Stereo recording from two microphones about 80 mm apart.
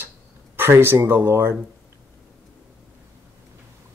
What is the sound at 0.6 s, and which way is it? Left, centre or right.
Speech, right.